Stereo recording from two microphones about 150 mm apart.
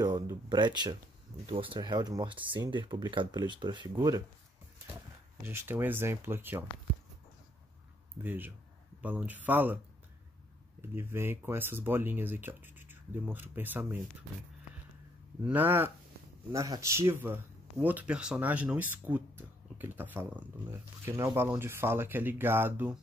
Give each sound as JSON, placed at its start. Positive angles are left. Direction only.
{"t": 0.0, "sound": "speech", "side_deg": -30}
{"t": 5.4, "sound": "speech", "side_deg": -15}
{"t": 8.2, "sound": "speech", "side_deg": -15}
{"t": 10.8, "sound": "speech", "side_deg": -15}
{"t": 15.4, "sound": "speech", "side_deg": -10}